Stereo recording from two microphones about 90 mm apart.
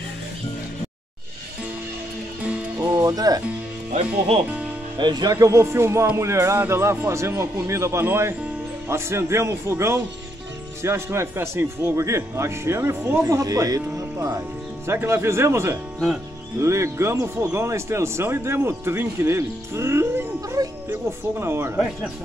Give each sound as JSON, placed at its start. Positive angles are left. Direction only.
{"t": 2.8, "sound": "speech", "side_deg": -45}
{"t": 4.9, "sound": "speech", "side_deg": -55}
{"t": 13.4, "sound": "speech", "side_deg": -40}
{"t": 20.3, "sound": "music", "side_deg": -40}
{"t": 21.4, "sound": "speech", "side_deg": -30}